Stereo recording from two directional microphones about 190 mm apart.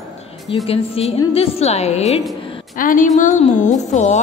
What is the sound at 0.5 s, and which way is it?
A woman's voice, 30° left (ahead or behind).